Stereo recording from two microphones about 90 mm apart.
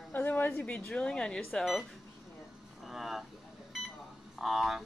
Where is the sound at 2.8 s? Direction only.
Centre (ahead or behind).